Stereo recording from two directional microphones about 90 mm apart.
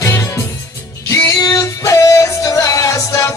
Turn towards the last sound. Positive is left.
turn(degrees=35)  # may be behind; listen again after turning